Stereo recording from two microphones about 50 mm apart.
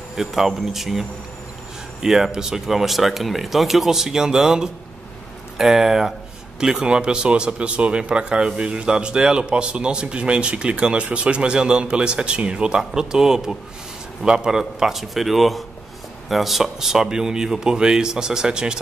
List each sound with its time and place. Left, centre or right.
0.1 s speech: centre